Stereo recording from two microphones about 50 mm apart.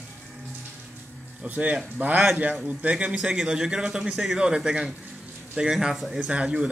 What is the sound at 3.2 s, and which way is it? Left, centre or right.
A man's voice, centre.